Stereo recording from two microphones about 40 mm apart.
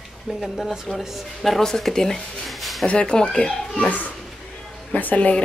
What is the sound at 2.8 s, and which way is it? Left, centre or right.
Speech, left.